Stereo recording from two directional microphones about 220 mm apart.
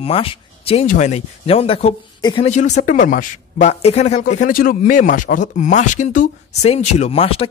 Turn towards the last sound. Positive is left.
turn(degrees=25)  # may be behind; listen again after turning